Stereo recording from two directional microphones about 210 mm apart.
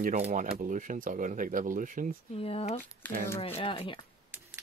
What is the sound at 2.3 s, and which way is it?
Speech, 25° left (ahead or behind).